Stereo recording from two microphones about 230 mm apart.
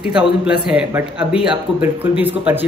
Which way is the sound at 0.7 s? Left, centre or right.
Centre.